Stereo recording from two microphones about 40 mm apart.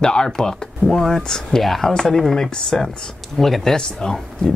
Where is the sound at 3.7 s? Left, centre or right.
Centre.